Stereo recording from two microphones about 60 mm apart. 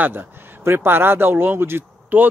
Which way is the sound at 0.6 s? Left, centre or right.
Right.